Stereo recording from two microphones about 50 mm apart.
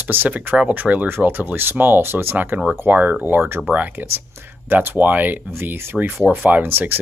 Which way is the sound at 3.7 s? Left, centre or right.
Right.